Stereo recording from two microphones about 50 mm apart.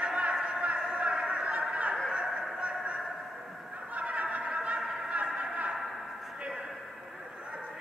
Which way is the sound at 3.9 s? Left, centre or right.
Right.